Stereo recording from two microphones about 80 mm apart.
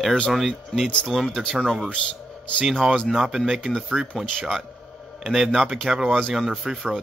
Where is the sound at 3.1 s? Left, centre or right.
Centre.